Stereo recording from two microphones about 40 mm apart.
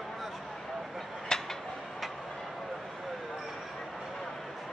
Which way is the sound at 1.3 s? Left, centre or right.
Centre.